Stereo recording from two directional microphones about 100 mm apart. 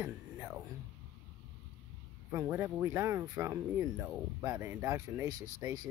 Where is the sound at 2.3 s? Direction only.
20° right (ahead or behind).